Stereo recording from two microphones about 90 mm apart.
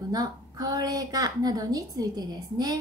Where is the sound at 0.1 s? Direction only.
45° right (ahead or behind).